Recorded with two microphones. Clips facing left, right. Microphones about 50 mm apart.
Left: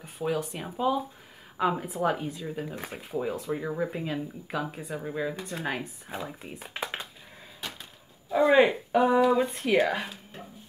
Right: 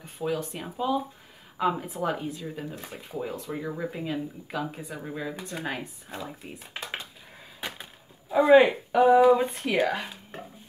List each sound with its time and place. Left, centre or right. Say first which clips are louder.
0.0 s speech: even; centre
7.6 s wood: right 3 dB; right
8.3 s speech: right 3 dB; centre